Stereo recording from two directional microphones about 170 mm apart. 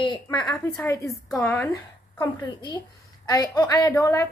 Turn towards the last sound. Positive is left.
turn(degrees=20)  # may be behind; listen again after turning